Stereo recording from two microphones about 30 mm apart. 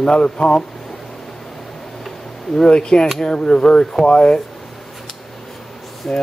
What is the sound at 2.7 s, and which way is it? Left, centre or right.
Speech, left.